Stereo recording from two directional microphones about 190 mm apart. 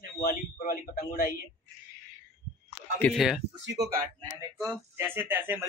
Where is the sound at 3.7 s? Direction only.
60° right (ahead or behind).